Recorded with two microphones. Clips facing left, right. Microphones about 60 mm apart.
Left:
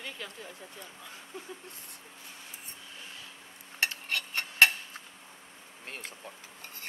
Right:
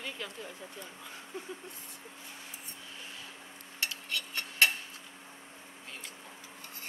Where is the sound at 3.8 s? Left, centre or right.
Left.